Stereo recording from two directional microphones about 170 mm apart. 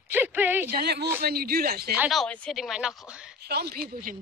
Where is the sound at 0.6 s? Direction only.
70° right (ahead or behind).